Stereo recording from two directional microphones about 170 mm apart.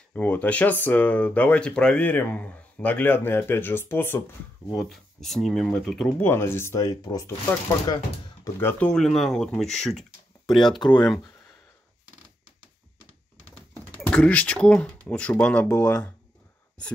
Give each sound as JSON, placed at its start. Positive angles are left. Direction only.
{"t": 0.1, "sound": "speech", "side_deg": 10}
{"t": 4.6, "sound": "speech", "side_deg": 0}
{"t": 6.2, "sound": "speech", "side_deg": 15}
{"t": 8.5, "sound": "speech", "side_deg": 10}
{"t": 10.7, "sound": "speech", "side_deg": 25}
{"t": 13.9, "sound": "speech", "side_deg": 5}